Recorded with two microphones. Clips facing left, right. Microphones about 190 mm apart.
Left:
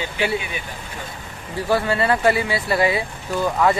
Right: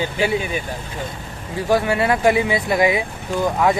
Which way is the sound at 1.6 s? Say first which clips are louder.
Right 2 dB; 15° right (ahead or behind).